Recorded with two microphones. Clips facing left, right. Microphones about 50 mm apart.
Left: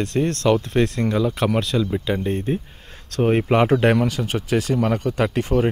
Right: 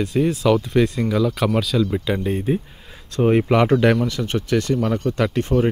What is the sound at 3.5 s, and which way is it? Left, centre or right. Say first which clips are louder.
Speech: right 1 dB; centre.